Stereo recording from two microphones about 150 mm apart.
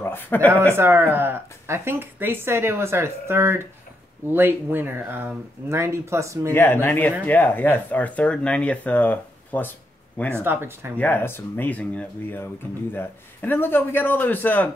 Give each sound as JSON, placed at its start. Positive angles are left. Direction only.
{"t": 0.0, "sound": "speech", "side_deg": 15}
{"t": 0.7, "sound": "a woman's voice", "side_deg": -15}
{"t": 6.5, "sound": "speech", "side_deg": 15}
{"t": 10.3, "sound": "a woman's voice", "side_deg": -15}
{"t": 11.0, "sound": "speech", "side_deg": 15}